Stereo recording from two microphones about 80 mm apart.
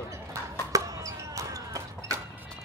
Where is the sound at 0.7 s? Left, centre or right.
Right.